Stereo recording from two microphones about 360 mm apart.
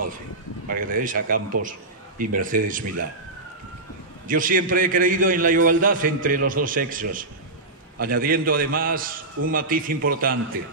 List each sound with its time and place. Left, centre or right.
0.7 s a man's voice: right
4.3 s a man's voice: right